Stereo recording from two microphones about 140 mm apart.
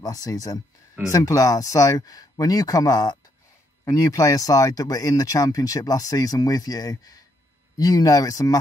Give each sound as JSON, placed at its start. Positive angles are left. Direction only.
{"t": 0.0, "sound": "speech", "side_deg": 25}